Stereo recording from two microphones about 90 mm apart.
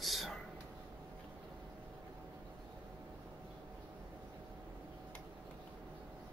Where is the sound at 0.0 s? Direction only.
Centre (ahead or behind).